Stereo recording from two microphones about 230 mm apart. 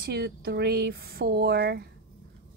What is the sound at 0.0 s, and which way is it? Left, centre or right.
A woman's voice, right.